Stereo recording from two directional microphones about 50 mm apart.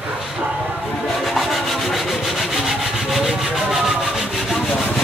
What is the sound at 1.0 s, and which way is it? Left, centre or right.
Rub, centre.